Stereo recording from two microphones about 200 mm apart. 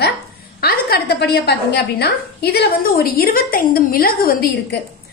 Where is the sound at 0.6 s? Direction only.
50° left (ahead or behind).